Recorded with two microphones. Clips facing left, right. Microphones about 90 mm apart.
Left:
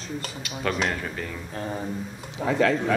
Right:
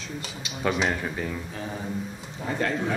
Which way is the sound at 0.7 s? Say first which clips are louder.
Right 1 dB; 5° right (ahead or behind).